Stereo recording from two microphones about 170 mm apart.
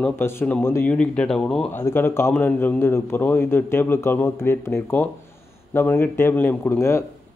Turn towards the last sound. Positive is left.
turn(degrees=15)  # may be behind; listen again after turning